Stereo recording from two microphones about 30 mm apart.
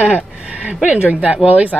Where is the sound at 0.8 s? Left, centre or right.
Right.